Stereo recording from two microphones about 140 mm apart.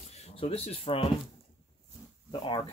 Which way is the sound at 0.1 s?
45° left (ahead or behind).